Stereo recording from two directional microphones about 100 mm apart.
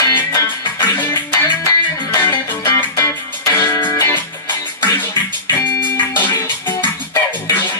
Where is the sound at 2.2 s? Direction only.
25° left (ahead or behind).